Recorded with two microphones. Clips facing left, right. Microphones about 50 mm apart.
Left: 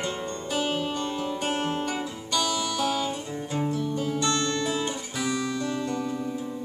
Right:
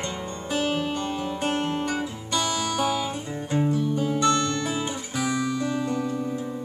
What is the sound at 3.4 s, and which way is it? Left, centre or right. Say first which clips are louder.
Guitar: right 5 dB; centre.